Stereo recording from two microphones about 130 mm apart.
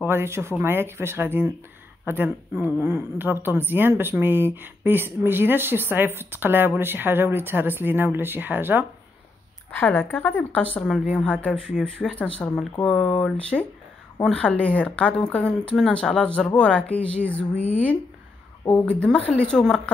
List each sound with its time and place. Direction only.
0.0 s a woman's voice: 20° right (ahead or behind)
9.7 s speech: 15° left (ahead or behind)